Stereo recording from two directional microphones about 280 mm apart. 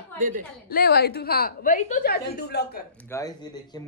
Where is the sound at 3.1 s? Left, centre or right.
Centre.